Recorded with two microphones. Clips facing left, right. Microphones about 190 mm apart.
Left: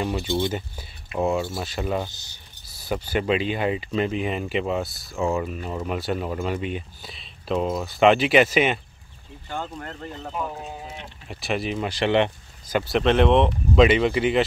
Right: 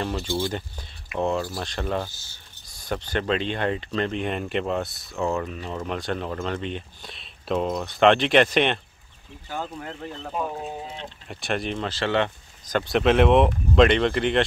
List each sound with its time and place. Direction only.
0.0 s speech: 5° left (ahead or behind)
2.0 s speech: 20° left (ahead or behind)
2.7 s speech: 5° left (ahead or behind)
11.2 s speech: centre (ahead or behind)
11.9 s speech: 15° left (ahead or behind)
12.7 s speech: centre (ahead or behind)